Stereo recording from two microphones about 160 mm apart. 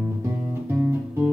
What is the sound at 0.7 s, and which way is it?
Guitar, 15° right (ahead or behind).